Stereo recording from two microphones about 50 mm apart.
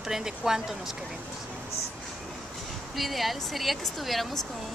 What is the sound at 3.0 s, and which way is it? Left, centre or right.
Speech, centre.